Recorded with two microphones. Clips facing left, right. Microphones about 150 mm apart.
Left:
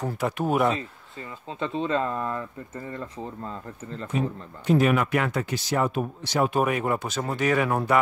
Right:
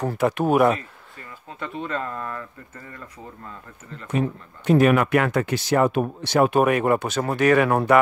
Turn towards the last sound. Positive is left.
turn(degrees=-65)  # may be behind; listen again after turning